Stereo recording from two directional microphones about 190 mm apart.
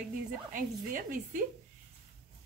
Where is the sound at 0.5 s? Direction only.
45° right (ahead or behind).